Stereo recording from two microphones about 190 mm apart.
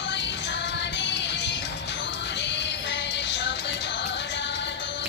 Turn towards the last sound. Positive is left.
turn(degrees=65)  # may be behind; listen again after turning